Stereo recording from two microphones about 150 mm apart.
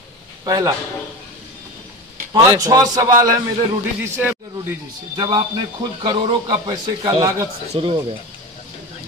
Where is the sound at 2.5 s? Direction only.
25° right (ahead or behind).